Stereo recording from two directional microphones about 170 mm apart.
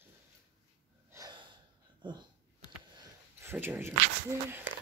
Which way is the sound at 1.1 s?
15° right (ahead or behind).